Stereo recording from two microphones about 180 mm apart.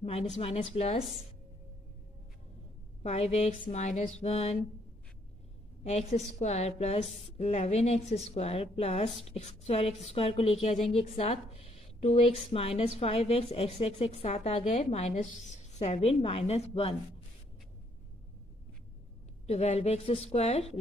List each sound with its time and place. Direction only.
0.0 s a woman's voice: 35° left (ahead or behind)
3.0 s a woman's voice: 35° left (ahead or behind)
5.9 s a woman's voice: 35° left (ahead or behind)
19.4 s a woman's voice: 35° left (ahead or behind)